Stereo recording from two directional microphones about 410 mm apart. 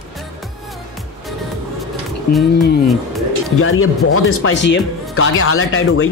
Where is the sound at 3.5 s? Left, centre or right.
Left.